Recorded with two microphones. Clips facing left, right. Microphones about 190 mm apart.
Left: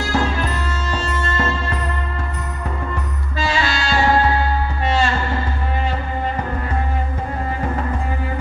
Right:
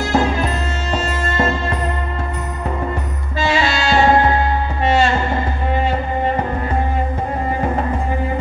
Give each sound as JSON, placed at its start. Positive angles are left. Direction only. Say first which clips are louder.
{"t": 0.1, "sound": "music", "louder": "right 4 dB", "side_deg": -25}
{"t": 3.4, "sound": "music", "louder": "right 4 dB", "side_deg": -25}